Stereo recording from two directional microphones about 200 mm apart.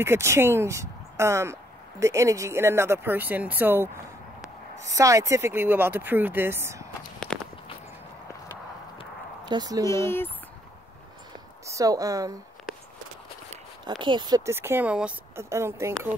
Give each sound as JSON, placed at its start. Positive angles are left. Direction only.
{"t": 0.0, "sound": "speech", "side_deg": -15}
{"t": 7.3, "sound": "walk", "side_deg": 5}
{"t": 9.5, "sound": "speech", "side_deg": -20}
{"t": 9.8, "sound": "speech", "side_deg": 15}
{"t": 11.6, "sound": "a woman's voice", "side_deg": -15}
{"t": 13.8, "sound": "speech", "side_deg": -25}